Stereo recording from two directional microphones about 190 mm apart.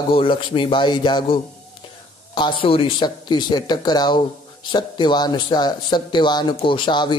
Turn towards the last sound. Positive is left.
turn(degrees=25)  # may be behind; listen again after turning